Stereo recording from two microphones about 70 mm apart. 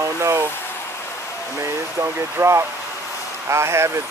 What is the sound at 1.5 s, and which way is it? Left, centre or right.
Speech, right.